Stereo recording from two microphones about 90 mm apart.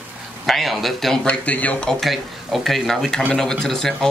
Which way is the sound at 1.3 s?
15° left (ahead or behind).